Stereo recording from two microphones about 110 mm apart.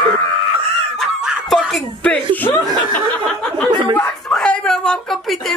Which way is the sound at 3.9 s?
10° left (ahead or behind).